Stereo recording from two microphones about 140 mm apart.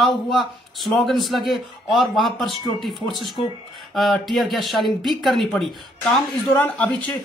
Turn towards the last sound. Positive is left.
turn(degrees=10)  # may be behind; listen again after turning